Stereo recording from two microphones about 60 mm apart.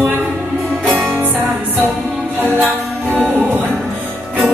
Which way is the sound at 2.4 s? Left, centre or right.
Right.